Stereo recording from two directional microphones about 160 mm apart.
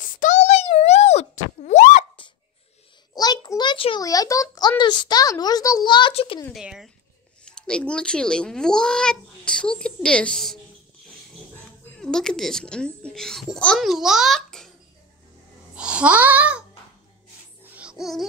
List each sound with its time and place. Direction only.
0.2 s boing: 45° left (ahead or behind)
3.2 s a sound: 25° left (ahead or behind)
4.0 s a child's voice: 20° left (ahead or behind)
6.5 s a child's voice: 5° right (ahead or behind)
12.0 s a child's voice: 5° left (ahead or behind)
15.7 s babbling: 5° right (ahead or behind)
17.7 s music: 5° right (ahead or behind)